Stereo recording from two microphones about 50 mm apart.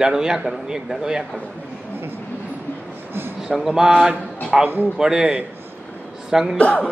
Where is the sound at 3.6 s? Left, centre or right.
Centre.